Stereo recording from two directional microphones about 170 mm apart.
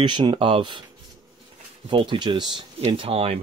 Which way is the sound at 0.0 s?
25° right (ahead or behind).